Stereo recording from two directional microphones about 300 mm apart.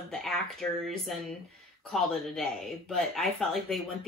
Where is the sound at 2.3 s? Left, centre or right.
Centre.